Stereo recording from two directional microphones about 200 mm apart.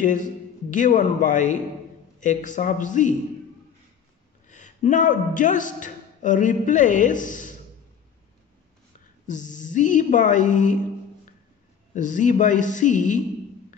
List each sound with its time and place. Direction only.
0.7 s a woman's voice: 40° left (ahead or behind)
4.5 s a man's voice: 40° left (ahead or behind)
9.3 s a woman's voice: 40° left (ahead or behind)
11.9 s a woman's voice: 40° left (ahead or behind)